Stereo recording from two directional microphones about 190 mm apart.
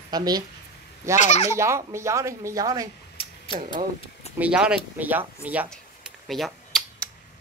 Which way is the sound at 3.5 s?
25° left (ahead or behind).